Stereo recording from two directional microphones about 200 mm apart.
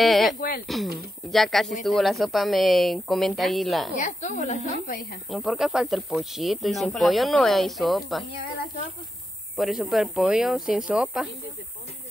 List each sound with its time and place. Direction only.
0.0 s speech: centre (ahead or behind)
3.9 s a woman's voice: 40° left (ahead or behind)
5.3 s speech: centre (ahead or behind)
9.6 s speech: centre (ahead or behind)